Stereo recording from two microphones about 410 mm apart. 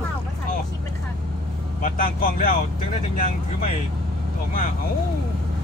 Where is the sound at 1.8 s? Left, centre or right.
Centre.